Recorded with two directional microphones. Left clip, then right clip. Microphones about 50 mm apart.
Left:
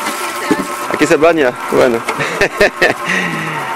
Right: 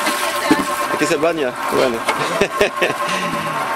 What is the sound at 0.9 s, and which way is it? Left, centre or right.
Speech, left.